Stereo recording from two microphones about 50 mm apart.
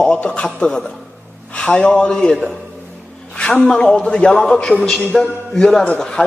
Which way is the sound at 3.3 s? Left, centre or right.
Centre.